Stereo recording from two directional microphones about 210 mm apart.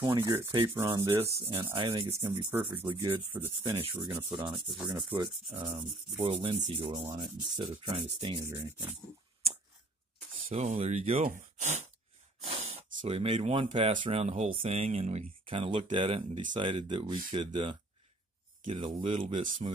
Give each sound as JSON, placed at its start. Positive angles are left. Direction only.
{"t": 0.0, "sound": "rub", "side_deg": -15}
{"t": 1.2, "sound": "speech", "side_deg": -25}
{"t": 2.3, "sound": "rub", "side_deg": -10}
{"t": 2.9, "sound": "speech", "side_deg": -25}
{"t": 3.3, "sound": "rub", "side_deg": -10}
{"t": 4.1, "sound": "speech", "side_deg": -20}
{"t": 5.1, "sound": "rub", "side_deg": -10}
{"t": 6.1, "sound": "speech", "side_deg": -30}
{"t": 8.5, "sound": "rub", "side_deg": -10}
{"t": 10.5, "sound": "speech", "side_deg": -35}
{"t": 13.0, "sound": "speech", "side_deg": -25}
{"t": 18.8, "sound": "speech", "side_deg": -25}